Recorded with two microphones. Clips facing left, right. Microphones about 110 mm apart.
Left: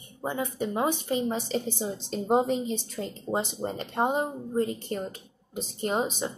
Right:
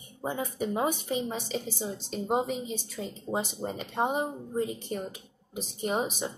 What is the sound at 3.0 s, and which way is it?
Speech, 15° left (ahead or behind).